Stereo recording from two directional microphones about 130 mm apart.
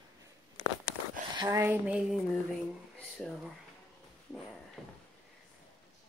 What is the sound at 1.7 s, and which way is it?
Speech, 10° right (ahead or behind).